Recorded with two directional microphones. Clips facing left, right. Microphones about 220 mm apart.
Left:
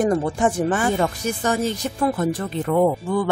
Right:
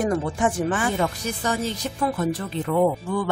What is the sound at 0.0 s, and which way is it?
Speech, 40° left (ahead or behind).